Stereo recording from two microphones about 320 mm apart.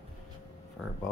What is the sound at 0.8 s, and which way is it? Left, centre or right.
Speech, centre.